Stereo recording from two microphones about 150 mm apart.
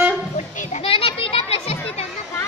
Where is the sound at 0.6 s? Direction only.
45° left (ahead or behind).